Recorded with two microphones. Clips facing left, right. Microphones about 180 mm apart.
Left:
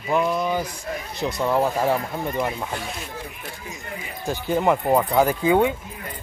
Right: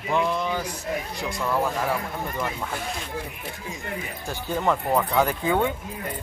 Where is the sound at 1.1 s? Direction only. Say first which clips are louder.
Left 7 dB; 25° left (ahead or behind).